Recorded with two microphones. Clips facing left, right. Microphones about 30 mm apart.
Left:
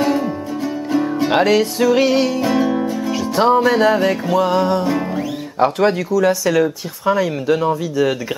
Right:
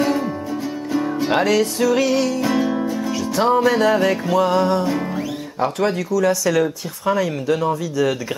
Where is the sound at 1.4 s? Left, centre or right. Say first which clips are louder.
Left 3 dB; centre.